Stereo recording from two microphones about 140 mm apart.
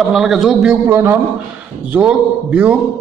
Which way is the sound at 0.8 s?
20° right (ahead or behind).